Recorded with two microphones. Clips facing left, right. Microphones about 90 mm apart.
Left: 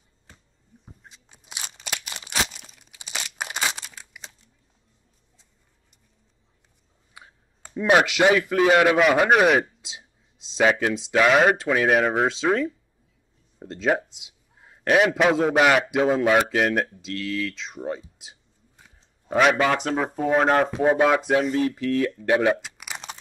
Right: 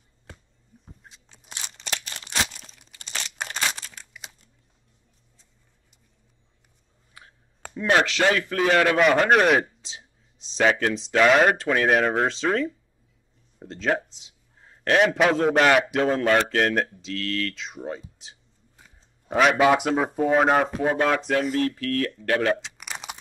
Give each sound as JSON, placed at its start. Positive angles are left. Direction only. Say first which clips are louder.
{"t": 1.3, "sound": "crunch", "louder": "left 1 dB", "side_deg": 10}
{"t": 2.4, "sound": "crumpling", "louder": "left 1 dB", "side_deg": 5}
{"t": 7.7, "sound": "a man's voice", "louder": "left 2 dB", "side_deg": 15}
{"t": 20.7, "sound": "speech", "louder": "left 3 dB", "side_deg": 15}
{"t": 22.6, "sound": "crumpling", "louder": "even", "side_deg": 5}